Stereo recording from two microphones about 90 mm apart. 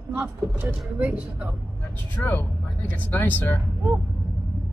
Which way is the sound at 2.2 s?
20° left (ahead or behind).